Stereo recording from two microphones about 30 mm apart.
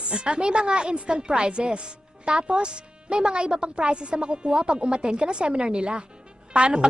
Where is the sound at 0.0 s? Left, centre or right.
Right.